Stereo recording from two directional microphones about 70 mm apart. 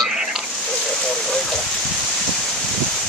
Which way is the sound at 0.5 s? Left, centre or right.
Centre.